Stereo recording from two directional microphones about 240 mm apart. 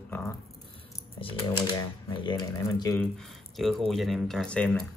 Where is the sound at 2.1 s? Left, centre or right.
Centre.